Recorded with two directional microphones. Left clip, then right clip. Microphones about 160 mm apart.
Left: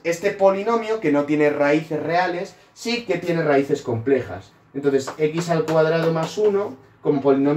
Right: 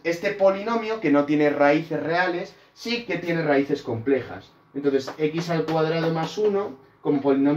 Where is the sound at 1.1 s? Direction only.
30° right (ahead or behind).